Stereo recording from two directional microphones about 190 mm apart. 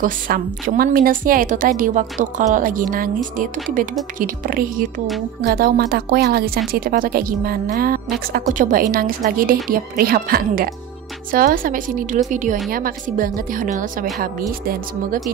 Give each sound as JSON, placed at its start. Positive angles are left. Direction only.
{"t": 0.0, "sound": "a woman's voice", "side_deg": -45}